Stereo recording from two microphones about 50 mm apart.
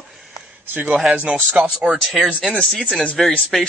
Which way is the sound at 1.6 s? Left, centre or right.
Right.